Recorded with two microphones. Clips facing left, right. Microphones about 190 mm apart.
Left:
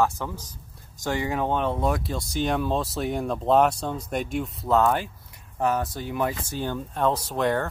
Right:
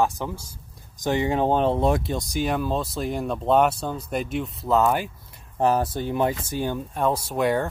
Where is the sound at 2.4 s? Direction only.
Centre (ahead or behind).